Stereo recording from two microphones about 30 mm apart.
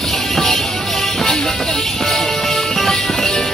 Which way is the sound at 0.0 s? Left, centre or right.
Centre.